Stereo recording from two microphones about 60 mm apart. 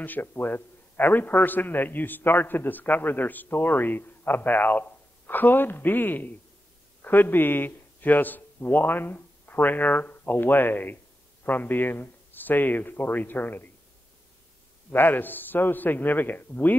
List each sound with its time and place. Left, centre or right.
0.0 s a man's voice: left
14.9 s a man's voice: left